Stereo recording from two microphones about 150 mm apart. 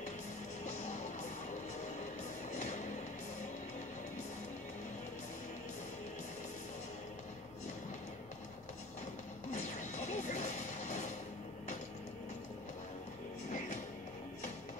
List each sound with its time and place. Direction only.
2.5 s vehicle: 50° left (ahead or behind)
9.5 s music: 50° left (ahead or behind)